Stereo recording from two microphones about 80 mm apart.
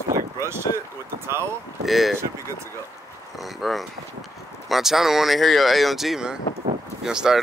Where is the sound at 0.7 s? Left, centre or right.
Left.